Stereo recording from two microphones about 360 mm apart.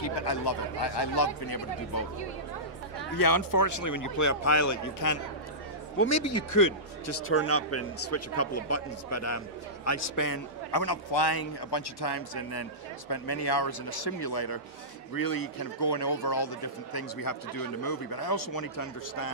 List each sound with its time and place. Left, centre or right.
0.2 s a man's voice: left
3.2 s a man's voice: left
15.1 s a man's voice: left